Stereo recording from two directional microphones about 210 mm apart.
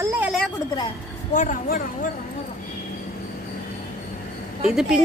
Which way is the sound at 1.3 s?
40° left (ahead or behind).